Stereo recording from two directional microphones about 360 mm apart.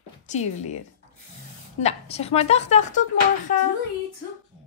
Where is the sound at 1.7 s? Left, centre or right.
Centre.